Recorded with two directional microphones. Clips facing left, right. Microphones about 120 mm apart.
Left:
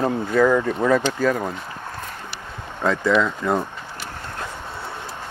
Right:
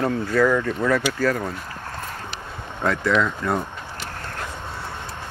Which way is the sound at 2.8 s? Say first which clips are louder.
Left 2 dB; 10° left (ahead or behind).